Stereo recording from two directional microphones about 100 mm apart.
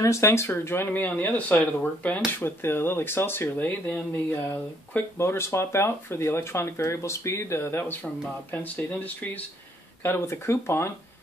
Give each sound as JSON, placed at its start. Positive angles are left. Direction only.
{"t": 0.0, "sound": "speech", "side_deg": 30}